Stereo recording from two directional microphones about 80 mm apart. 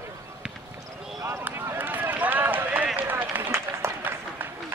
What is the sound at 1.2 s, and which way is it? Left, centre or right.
Speech, right.